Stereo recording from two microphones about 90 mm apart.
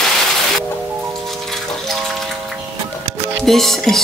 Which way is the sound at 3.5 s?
5° left (ahead or behind).